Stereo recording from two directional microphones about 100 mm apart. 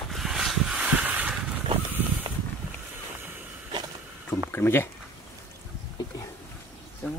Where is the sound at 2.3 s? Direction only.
55° right (ahead or behind).